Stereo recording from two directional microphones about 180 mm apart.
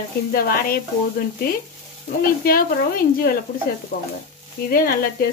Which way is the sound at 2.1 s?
55° left (ahead or behind).